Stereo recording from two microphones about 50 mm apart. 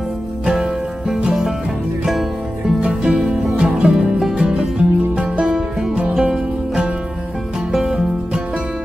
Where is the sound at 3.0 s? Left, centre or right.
Centre.